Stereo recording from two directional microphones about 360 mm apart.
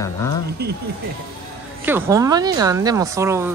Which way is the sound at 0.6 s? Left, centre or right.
Right.